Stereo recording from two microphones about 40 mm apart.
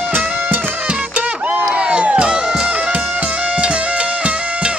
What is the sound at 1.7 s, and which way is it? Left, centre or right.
Music, right.